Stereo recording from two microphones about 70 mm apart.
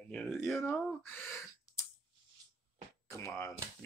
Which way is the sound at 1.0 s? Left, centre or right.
Left.